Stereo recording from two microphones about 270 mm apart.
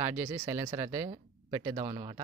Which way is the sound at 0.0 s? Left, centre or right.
Centre.